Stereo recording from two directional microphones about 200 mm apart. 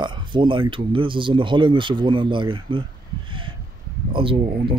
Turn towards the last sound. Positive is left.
turn(degrees=-25)  # may be behind; listen again after turning